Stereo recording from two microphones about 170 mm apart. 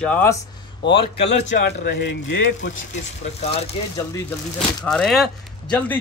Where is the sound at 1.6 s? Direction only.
80° left.